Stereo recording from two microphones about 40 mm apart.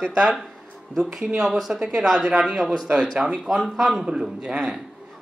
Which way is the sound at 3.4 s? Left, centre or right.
Centre.